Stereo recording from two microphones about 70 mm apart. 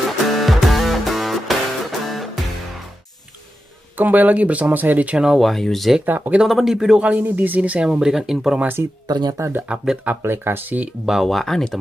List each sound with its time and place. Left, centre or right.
0.4 s music: centre
4.0 s speech: right
5.2 s speech: centre
6.0 s speech: right
6.3 s speech: centre
7.0 s speech: centre
8.5 s speech: right
9.0 s speech: right
9.7 s speech: centre
10.0 s speech: right
11.2 s speech: centre